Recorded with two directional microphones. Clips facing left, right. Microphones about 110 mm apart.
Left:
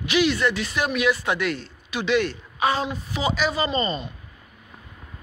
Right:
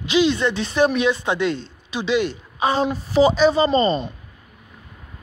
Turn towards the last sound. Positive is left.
turn(degrees=-35)  # may be behind; listen again after turning